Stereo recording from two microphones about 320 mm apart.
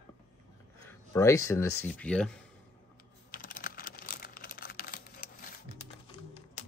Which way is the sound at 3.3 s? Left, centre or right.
Left.